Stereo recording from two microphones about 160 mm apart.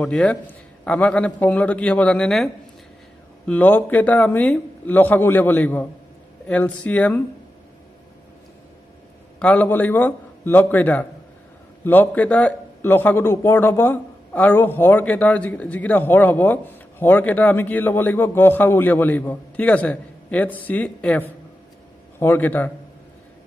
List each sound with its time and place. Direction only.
0.0 s a man's voice: 5° left (ahead or behind)
9.4 s a man's voice: 10° left (ahead or behind)